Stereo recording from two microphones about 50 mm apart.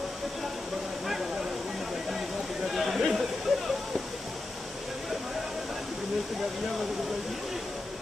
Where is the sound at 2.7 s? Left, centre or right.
Centre.